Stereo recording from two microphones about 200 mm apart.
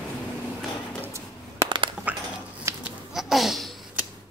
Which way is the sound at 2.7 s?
15° right (ahead or behind).